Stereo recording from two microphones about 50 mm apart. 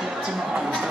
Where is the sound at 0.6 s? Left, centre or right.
Centre.